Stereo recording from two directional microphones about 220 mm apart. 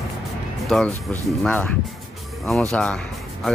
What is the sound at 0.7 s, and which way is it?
Speech, centre (ahead or behind).